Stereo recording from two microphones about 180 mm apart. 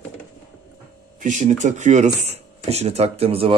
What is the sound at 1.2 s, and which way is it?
Speech, 45° right (ahead or behind).